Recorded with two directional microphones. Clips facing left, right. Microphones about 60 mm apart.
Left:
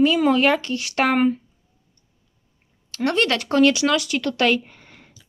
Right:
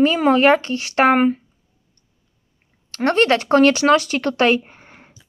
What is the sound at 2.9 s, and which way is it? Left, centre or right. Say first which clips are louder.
Speech: right 5 dB; right.